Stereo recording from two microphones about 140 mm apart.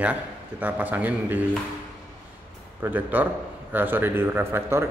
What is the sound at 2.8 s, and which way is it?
A man's voice, 10° right (ahead or behind).